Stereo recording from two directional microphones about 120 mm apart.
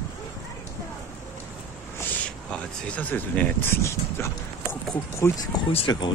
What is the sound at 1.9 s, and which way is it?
Speech, 10° left (ahead or behind).